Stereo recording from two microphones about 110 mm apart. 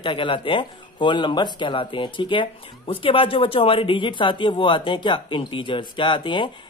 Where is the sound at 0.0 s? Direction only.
50° left (ahead or behind).